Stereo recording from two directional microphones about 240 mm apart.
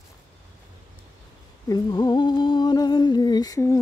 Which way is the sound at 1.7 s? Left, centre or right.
Centre.